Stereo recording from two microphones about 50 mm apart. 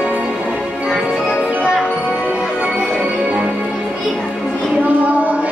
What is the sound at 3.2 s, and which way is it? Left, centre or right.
Music, right.